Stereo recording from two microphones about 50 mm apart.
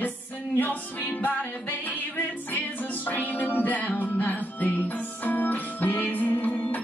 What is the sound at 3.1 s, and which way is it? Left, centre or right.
Music, left.